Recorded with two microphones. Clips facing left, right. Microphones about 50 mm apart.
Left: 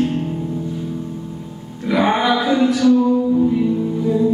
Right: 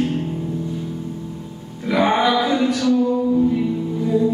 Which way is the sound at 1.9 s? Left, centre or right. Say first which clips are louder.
Even; centre.